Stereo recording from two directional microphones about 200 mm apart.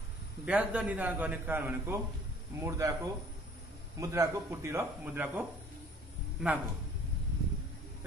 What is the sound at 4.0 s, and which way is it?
A man's voice, 15° right (ahead or behind).